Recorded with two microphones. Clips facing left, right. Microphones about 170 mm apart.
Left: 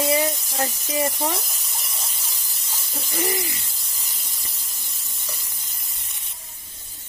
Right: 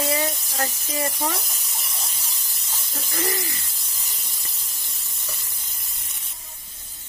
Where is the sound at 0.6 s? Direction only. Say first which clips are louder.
Left 3 dB; 30° left (ahead or behind).